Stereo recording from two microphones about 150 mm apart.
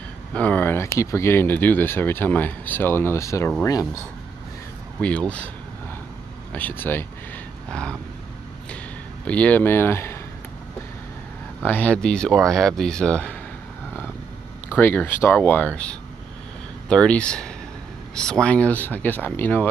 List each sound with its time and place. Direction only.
0.3 s speech: 10° left (ahead or behind)
5.0 s speech: 10° left (ahead or behind)
6.5 s speech: 10° left (ahead or behind)
9.2 s speech: 10° left (ahead or behind)
11.6 s speech: 10° left (ahead or behind)
14.8 s speech: 15° left (ahead or behind)